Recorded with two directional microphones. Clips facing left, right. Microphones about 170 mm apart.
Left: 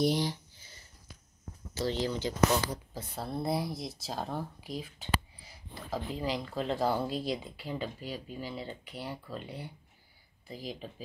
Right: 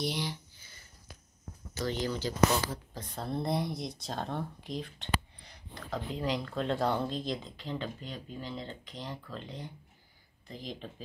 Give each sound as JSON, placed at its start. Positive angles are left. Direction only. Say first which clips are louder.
{"t": 0.0, "sound": "a sound", "louder": "left 6 dB", "side_deg": 40}
{"t": 1.8, "sound": "speech", "louder": "left 1 dB", "side_deg": 25}
{"t": 2.9, "sound": "speech", "louder": "right 1 dB", "side_deg": 10}